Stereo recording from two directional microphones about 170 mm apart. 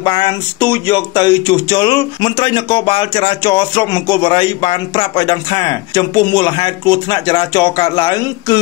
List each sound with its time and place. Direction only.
0.0 s speech: 25° left (ahead or behind)